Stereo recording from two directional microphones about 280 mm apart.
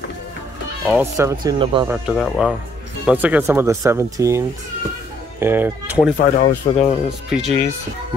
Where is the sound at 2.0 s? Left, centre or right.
Centre.